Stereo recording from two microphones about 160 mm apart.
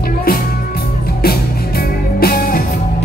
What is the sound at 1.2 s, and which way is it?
Music, 70° left (ahead or behind).